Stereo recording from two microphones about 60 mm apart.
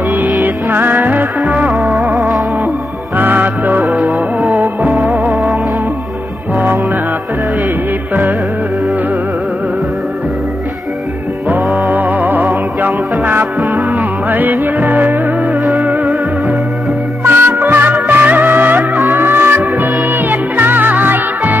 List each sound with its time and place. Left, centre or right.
0.4 s music: right
5.0 s music: centre
5.3 s music: right
11.9 s music: right
17.2 s music: right